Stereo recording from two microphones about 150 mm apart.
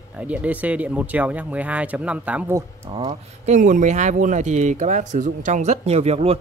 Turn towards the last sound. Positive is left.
turn(degrees=-45)  # may be behind; listen again after turning